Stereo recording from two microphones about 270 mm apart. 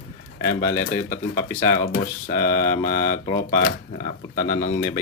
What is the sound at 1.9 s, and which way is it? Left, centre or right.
Speech, left.